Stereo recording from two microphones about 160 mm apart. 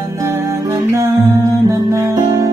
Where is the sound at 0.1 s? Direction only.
20° right (ahead or behind).